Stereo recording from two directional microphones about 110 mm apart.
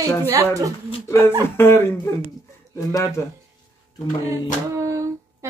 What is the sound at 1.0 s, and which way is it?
Speech, 25° left (ahead or behind).